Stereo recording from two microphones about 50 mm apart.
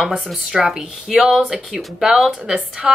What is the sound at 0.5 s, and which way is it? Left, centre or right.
A woman's voice, centre.